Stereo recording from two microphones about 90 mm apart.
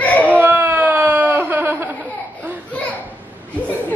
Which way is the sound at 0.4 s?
25° right (ahead or behind).